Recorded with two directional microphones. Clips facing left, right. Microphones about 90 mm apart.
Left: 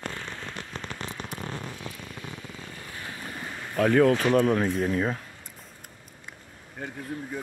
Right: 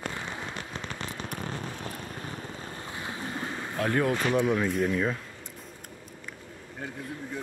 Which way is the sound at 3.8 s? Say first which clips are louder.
Left 7 dB; 90° left.